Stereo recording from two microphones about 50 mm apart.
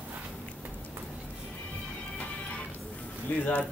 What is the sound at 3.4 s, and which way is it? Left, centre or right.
Speech, left.